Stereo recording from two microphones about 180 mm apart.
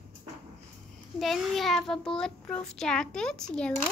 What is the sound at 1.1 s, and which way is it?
A child's voice, centre (ahead or behind).